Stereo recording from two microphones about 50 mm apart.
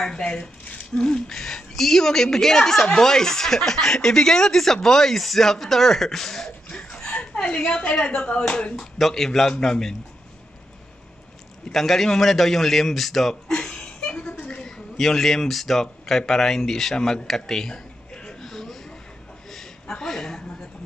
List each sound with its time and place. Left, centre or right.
0.2 s a woman's voice: left
7.0 s a sound: left
7.3 s speech: centre
8.9 s a woman's voice: centre
11.7 s a man's voice: centre
15.0 s speech: centre
18.4 s a sound: centre